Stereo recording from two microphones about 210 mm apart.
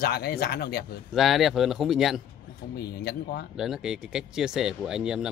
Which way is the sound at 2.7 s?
50° left (ahead or behind).